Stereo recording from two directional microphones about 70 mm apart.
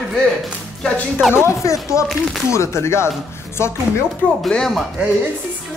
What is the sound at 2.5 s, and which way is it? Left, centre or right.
Speech, left.